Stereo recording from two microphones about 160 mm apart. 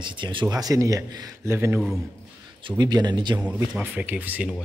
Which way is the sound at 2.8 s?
25° right (ahead or behind).